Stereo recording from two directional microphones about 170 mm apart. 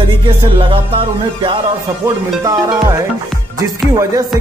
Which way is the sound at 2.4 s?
20° right (ahead or behind).